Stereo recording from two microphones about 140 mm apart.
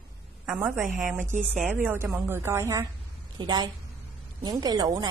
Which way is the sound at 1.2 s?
60° right (ahead or behind).